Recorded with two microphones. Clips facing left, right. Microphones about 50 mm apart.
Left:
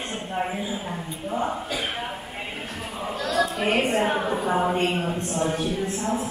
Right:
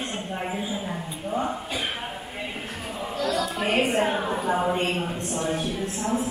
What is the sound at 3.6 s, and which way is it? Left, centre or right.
A woman's voice, centre.